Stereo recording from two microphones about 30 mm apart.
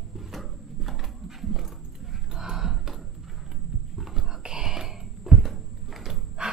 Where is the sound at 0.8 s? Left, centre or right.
Centre.